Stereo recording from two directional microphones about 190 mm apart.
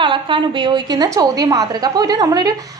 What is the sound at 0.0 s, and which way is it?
A woman's voice, 25° right (ahead or behind).